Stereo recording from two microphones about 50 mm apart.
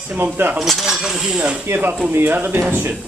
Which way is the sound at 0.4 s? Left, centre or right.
Right.